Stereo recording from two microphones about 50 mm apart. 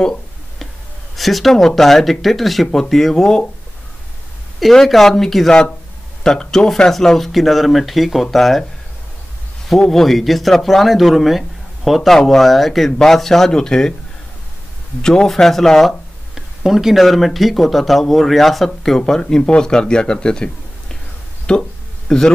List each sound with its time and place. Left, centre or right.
1.1 s speech: centre
4.7 s speech: centre
9.8 s speech: centre
15.0 s speech: centre
16.3 s speech: centre
21.5 s a sound: centre